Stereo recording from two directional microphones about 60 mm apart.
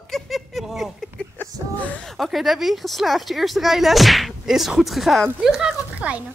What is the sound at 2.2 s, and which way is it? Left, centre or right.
Speech, centre.